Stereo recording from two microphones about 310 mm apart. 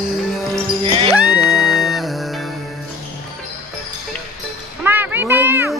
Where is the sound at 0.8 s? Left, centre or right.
Centre.